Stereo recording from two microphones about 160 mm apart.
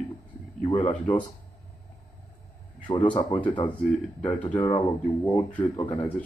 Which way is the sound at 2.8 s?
30° left (ahead or behind).